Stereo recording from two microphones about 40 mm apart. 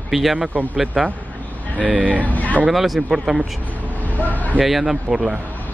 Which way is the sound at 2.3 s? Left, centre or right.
Left.